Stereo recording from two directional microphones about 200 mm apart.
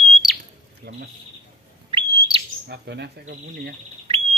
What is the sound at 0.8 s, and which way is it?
Bird, 55° right (ahead or behind).